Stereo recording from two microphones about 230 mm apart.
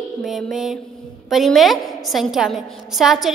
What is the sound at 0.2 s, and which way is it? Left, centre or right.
A woman's voice, centre.